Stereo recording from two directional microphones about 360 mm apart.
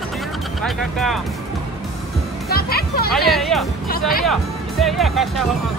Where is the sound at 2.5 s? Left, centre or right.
Left.